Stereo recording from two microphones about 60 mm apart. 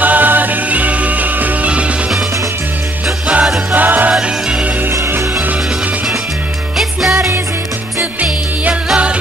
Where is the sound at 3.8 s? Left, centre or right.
Right.